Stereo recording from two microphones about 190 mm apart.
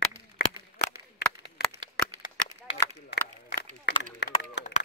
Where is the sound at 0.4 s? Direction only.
55° left (ahead or behind).